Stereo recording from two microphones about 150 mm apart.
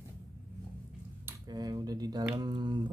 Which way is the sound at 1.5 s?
25° right (ahead or behind).